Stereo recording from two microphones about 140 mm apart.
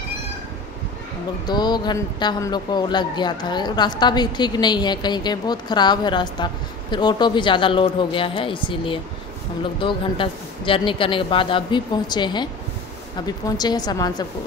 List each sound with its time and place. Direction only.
1.5 s a man's voice: 30° left (ahead or behind)
13.5 s a woman's voice: 30° left (ahead or behind)